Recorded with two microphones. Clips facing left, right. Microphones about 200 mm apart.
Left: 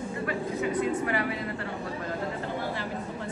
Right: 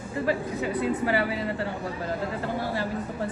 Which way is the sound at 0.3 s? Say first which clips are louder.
Right 2 dB; 30° right (ahead or behind).